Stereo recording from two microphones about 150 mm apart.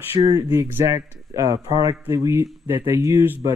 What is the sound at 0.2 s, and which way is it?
Speech, 25° right (ahead or behind).